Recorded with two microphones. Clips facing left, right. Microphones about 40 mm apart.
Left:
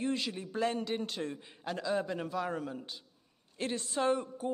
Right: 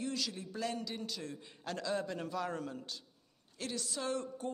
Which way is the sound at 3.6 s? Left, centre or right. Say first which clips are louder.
Left 7 dB; left.